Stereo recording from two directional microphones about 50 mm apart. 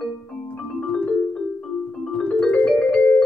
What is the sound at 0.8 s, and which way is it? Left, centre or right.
Music, centre.